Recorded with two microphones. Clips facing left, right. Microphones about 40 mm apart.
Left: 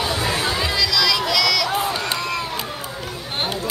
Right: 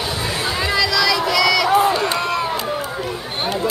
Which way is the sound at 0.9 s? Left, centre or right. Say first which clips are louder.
Right 2 dB; right.